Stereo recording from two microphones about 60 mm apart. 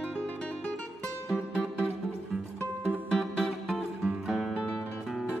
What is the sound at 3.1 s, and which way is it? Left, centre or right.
Music, centre.